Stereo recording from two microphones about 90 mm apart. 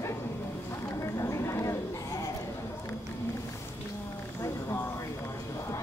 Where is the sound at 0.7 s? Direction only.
35° left (ahead or behind).